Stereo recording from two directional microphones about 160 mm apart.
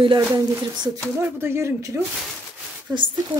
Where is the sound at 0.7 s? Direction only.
25° right (ahead or behind).